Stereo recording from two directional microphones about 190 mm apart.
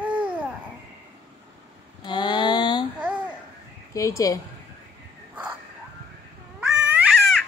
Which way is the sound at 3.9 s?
15° left (ahead or behind).